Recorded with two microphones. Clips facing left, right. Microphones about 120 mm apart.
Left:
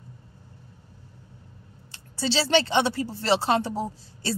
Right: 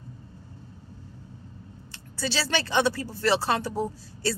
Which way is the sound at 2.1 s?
25° left (ahead or behind).